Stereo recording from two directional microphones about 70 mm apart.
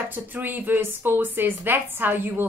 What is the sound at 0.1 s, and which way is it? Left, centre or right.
A woman's voice, right.